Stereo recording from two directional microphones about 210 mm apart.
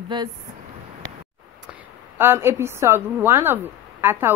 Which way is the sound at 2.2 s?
10° right (ahead or behind).